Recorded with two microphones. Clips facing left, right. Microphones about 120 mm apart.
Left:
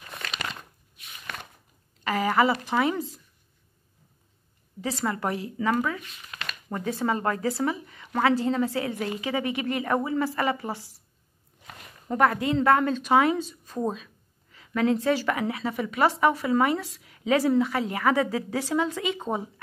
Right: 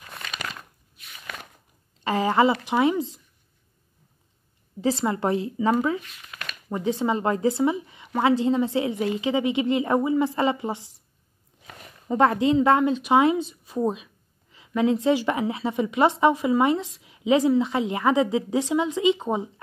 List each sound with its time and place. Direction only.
2.0 s a woman's voice: 25° right (ahead or behind)
4.8 s speech: 25° right (ahead or behind)
12.2 s speech: 25° right (ahead or behind)